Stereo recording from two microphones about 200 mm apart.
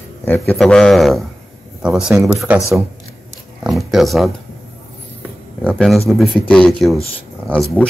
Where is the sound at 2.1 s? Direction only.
15° right (ahead or behind).